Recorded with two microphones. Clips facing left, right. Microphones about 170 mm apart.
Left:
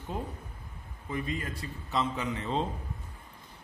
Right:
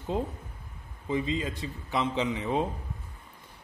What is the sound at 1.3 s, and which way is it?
Speech, 90° right.